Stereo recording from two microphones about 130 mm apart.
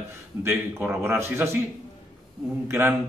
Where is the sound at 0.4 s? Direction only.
15° right (ahead or behind).